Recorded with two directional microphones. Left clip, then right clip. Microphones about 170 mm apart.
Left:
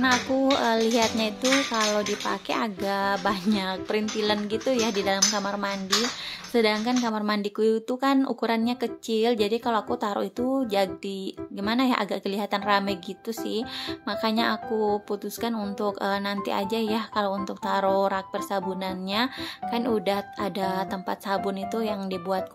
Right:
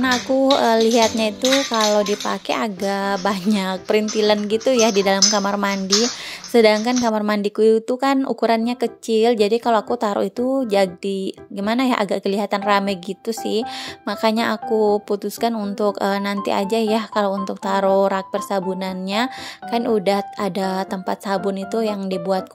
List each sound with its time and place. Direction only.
0.0 s speech: 35° right (ahead or behind)